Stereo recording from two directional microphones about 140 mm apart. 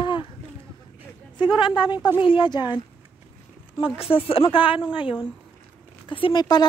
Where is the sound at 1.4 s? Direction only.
35° left (ahead or behind).